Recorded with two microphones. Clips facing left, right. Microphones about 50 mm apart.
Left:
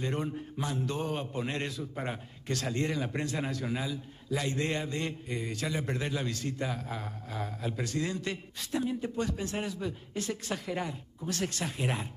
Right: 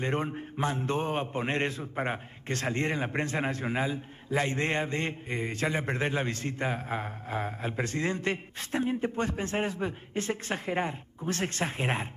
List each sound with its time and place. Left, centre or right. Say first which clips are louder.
0.0 s a man's voice: right 3 dB; right